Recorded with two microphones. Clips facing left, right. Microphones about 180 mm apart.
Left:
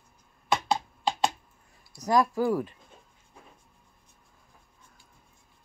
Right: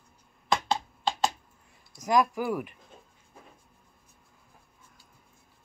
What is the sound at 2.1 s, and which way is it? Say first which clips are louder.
Speech: left 1 dB; 15° right (ahead or behind).